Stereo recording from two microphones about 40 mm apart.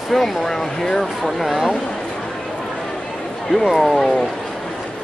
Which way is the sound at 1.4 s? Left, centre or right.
Centre.